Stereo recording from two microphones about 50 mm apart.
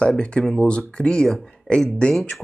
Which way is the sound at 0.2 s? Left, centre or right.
Left.